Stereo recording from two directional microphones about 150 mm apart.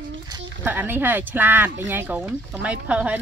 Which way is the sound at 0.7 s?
15° right (ahead or behind).